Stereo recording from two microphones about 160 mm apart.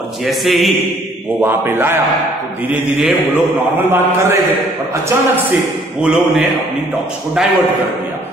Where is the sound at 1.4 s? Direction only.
15° right (ahead or behind).